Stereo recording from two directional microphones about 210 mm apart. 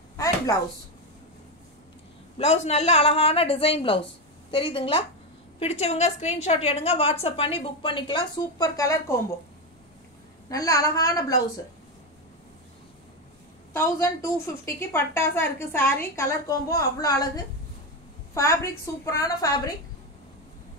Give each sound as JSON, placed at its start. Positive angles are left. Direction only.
{"t": 2.3, "sound": "a woman's voice", "side_deg": 30}
{"t": 10.5, "sound": "a woman's voice", "side_deg": 15}
{"t": 13.7, "sound": "a woman's voice", "side_deg": 10}